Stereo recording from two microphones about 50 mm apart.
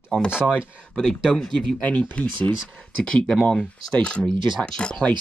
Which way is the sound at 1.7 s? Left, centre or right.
Left.